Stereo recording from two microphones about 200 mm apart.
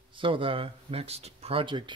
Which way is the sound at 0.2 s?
25° right (ahead or behind).